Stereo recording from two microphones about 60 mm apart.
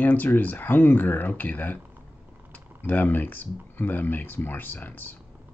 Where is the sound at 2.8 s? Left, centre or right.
Left.